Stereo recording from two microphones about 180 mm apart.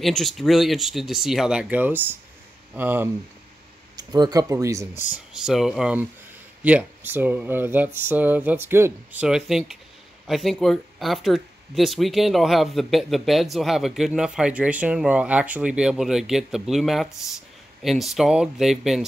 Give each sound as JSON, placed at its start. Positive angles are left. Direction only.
{"t": 0.0, "sound": "speech", "side_deg": 0}
{"t": 3.9, "sound": "speech", "side_deg": -20}
{"t": 5.3, "sound": "speech", "side_deg": 0}